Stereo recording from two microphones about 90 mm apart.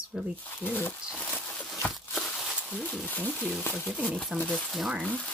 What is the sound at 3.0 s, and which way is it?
Speech, 15° left (ahead or behind).